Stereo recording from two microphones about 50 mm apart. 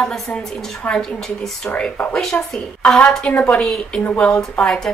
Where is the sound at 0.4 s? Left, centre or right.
Centre.